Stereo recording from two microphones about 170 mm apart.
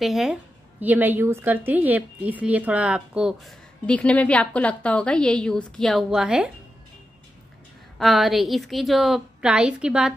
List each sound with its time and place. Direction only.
0.0 s a woman's voice: centre (ahead or behind)
8.0 s a woman's voice: centre (ahead or behind)